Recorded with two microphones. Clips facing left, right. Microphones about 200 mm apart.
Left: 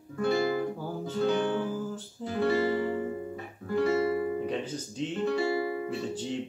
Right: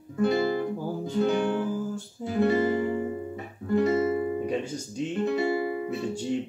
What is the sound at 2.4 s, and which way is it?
Music, 20° right (ahead or behind).